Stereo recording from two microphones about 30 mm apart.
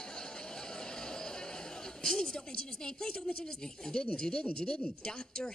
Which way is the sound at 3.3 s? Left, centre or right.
Left.